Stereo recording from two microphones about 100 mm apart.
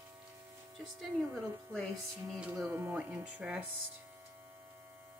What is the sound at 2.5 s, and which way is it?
Speech, 25° right (ahead or behind).